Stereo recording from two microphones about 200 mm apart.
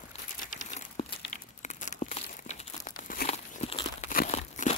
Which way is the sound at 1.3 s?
40° left (ahead or behind).